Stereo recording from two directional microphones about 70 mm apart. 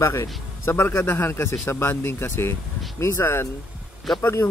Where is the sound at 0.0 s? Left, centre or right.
Left.